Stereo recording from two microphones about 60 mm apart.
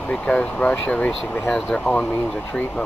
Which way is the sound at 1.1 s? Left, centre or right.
Centre.